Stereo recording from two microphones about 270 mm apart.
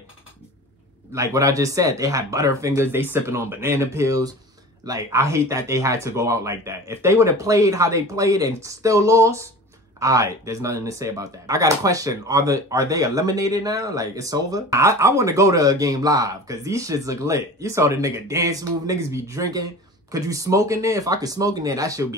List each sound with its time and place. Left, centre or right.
1.1 s speech: centre